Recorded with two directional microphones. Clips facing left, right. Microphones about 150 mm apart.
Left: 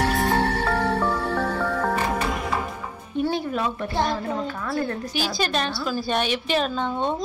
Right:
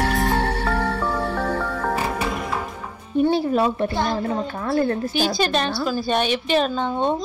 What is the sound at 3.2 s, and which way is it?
A woman's voice, 35° right (ahead or behind).